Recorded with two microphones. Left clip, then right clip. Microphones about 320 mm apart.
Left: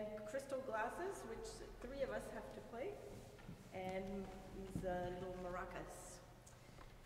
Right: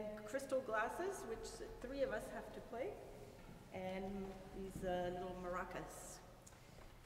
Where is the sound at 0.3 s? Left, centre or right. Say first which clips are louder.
Right 5 dB; right.